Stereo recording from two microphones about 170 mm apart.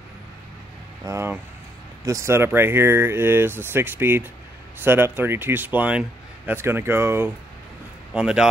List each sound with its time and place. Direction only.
1.0 s speech: 15° right (ahead or behind)